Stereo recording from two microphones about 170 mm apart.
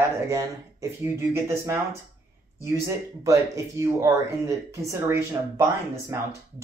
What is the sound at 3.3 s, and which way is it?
Speech, 20° right (ahead or behind).